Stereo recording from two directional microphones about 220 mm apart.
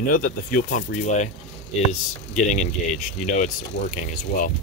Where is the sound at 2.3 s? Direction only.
35° left (ahead or behind).